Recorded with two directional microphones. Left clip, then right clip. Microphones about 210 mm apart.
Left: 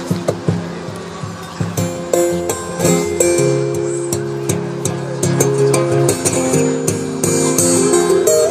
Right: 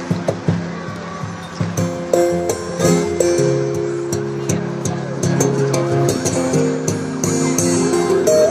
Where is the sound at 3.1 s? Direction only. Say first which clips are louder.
Left 2 dB; 15° right (ahead or behind).